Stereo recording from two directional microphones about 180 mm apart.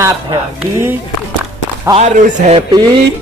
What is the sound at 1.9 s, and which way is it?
Speech, 45° right (ahead or behind).